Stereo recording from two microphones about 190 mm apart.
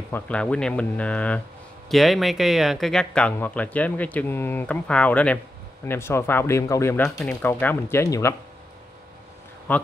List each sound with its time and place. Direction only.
0.1 s speech: 5° left (ahead or behind)
9.7 s speech: 10° left (ahead or behind)